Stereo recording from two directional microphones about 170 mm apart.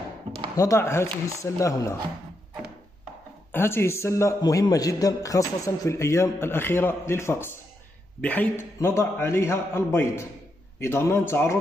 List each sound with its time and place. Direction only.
0.6 s a man's voice: 20° left (ahead or behind)
3.5 s a man's voice: 15° left (ahead or behind)